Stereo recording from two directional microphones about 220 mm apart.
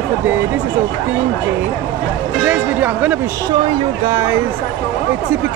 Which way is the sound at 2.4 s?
5° right (ahead or behind).